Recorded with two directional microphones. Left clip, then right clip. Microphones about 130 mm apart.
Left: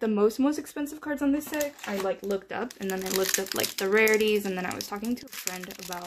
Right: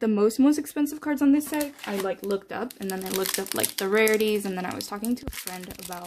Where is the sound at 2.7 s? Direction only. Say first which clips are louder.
Left 3 dB; 20° right (ahead or behind).